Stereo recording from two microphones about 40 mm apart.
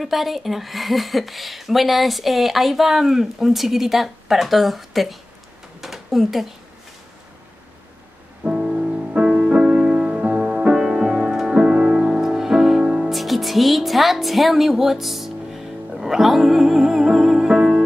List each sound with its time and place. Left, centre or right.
0.0 s a woman's voice: centre
8.5 s music: right
13.1 s music: centre